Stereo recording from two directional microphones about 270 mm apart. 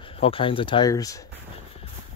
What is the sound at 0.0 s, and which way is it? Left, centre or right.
Speech, centre.